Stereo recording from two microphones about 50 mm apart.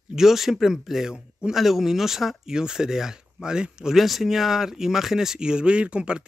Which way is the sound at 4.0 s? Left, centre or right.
Centre.